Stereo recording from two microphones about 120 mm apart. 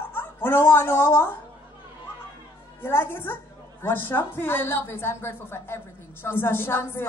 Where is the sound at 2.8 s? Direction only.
15° left (ahead or behind).